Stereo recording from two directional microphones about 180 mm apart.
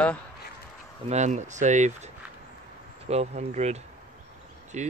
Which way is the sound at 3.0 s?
40° right (ahead or behind).